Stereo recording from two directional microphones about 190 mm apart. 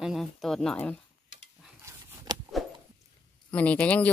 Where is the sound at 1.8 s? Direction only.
20° right (ahead or behind).